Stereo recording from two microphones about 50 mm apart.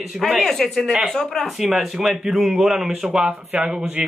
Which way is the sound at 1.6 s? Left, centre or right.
Centre.